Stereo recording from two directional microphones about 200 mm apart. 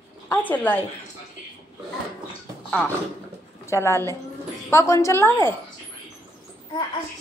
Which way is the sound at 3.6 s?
15° left (ahead or behind).